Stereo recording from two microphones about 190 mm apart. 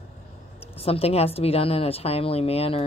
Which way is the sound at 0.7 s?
30° left (ahead or behind).